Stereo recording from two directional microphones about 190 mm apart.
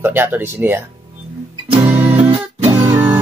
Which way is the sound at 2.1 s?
30° right (ahead or behind).